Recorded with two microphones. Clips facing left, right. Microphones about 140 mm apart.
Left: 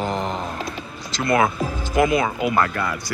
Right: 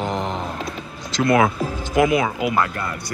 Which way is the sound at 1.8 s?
10° right (ahead or behind).